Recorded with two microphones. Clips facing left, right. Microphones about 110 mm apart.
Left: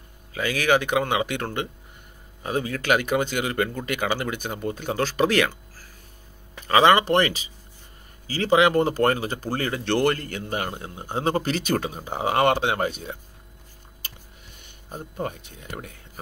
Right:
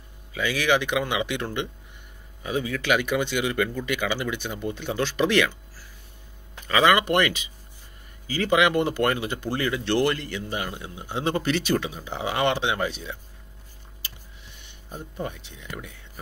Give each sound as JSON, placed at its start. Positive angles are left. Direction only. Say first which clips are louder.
{"t": 0.6, "sound": "speech", "louder": "left 2 dB", "side_deg": 40}
{"t": 6.7, "sound": "speech", "louder": "left 3 dB", "side_deg": 30}
{"t": 14.6, "sound": "speech", "louder": "left 2 dB", "side_deg": 45}